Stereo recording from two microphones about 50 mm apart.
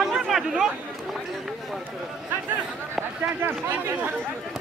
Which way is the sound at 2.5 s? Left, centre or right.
Right.